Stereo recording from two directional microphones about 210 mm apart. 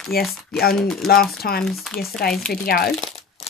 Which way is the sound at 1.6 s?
Centre (ahead or behind).